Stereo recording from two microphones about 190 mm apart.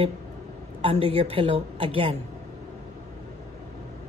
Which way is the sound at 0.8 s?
30° right (ahead or behind).